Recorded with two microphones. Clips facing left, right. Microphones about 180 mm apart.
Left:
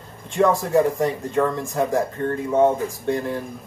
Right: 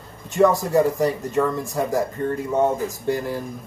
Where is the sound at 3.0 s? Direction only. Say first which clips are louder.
Left 1 dB; 5° right (ahead or behind).